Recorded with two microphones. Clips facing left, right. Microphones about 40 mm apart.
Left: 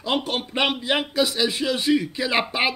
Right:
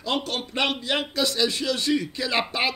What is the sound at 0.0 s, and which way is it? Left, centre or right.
A man's voice, centre.